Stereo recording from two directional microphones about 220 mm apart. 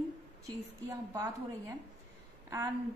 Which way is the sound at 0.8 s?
15° right (ahead or behind).